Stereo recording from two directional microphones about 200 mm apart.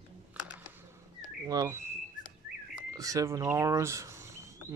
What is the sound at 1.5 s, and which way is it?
Speech, 15° right (ahead or behind).